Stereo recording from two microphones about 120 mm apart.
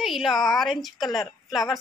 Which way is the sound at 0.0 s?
Centre (ahead or behind).